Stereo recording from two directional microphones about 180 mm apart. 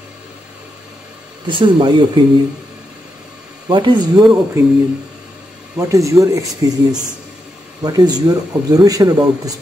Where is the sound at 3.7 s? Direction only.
25° right (ahead or behind).